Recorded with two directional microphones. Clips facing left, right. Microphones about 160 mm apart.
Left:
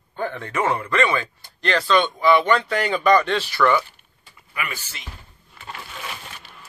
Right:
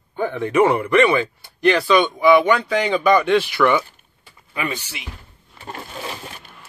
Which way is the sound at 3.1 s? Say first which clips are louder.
Right 3 dB; 10° right (ahead or behind).